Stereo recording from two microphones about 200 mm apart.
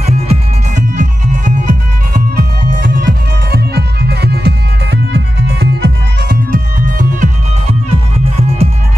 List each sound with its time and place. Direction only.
0.0 s music: 35° right (ahead or behind)
3.4 s music: 55° right (ahead or behind)
7.0 s music: 35° right (ahead or behind)